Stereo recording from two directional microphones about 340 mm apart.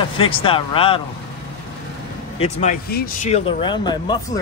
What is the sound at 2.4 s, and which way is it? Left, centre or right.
Speech, centre.